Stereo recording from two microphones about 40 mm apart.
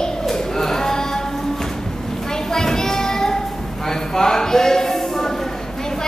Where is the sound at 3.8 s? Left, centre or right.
Centre.